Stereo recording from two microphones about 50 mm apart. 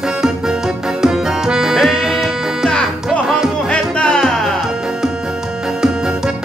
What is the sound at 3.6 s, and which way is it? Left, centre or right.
Music, centre.